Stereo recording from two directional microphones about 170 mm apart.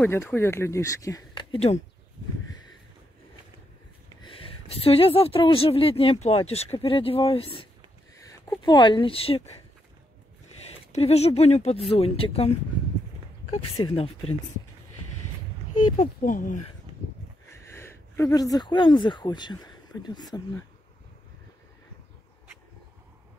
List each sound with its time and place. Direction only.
0.0 s speech: 10° left (ahead or behind)
1.5 s speech: 40° left (ahead or behind)
4.2 s a woman's voice: 30° left (ahead or behind)
8.3 s speech: 25° left (ahead or behind)
10.9 s a woman's voice: 40° left (ahead or behind)
13.9 s a woman's voice: 35° left (ahead or behind)
16.2 s speech: 50° left (ahead or behind)
17.5 s speech: 15° left (ahead or behind)